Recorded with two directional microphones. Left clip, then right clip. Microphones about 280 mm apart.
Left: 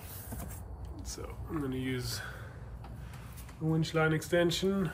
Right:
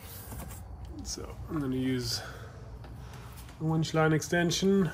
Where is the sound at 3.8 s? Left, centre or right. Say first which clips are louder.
Right 4 dB; right.